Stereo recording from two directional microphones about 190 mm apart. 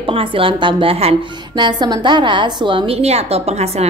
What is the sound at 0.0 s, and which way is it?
A woman's voice, 30° right (ahead or behind).